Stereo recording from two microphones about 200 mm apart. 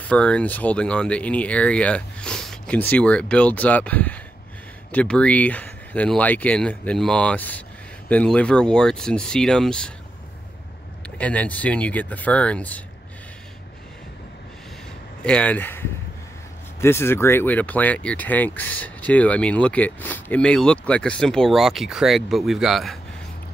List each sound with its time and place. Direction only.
0.1 s speech: 5° left (ahead or behind)
11.1 s speech: 5° left (ahead or behind)
15.2 s speech: 5° left (ahead or behind)